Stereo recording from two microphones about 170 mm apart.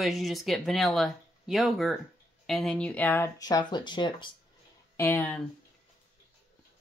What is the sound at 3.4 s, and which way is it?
Speech, 25° left (ahead or behind).